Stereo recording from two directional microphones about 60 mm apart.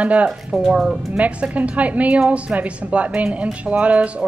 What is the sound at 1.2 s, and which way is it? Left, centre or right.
Speech, right.